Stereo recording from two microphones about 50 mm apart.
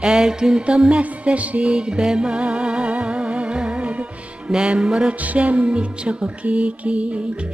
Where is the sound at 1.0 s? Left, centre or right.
Right.